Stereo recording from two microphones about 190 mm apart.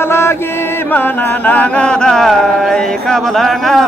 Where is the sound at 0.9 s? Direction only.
10° left (ahead or behind).